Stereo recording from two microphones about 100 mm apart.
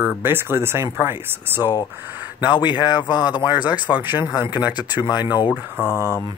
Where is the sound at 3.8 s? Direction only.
20° right (ahead or behind).